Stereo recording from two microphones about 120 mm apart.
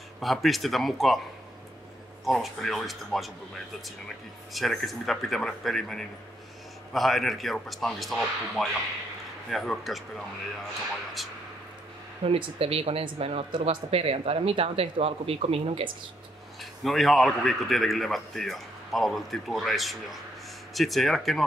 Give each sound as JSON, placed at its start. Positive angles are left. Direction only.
{"t": 0.2, "sound": "speech", "side_deg": 0}
{"t": 2.2, "sound": "speech", "side_deg": 0}
{"t": 4.6, "sound": "speech", "side_deg": 0}
{"t": 12.3, "sound": "speech", "side_deg": -55}
{"t": 16.8, "sound": "speech", "side_deg": 0}